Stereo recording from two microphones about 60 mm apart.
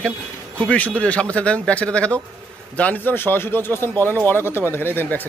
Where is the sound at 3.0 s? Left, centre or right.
Left.